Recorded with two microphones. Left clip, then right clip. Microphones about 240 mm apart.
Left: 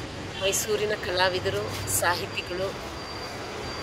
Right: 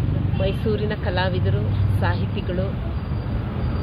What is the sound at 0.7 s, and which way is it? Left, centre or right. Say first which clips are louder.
Speech: even; centre.